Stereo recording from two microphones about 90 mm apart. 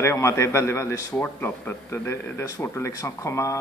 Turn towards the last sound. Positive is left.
turn(degrees=35)  # may be behind; listen again after turning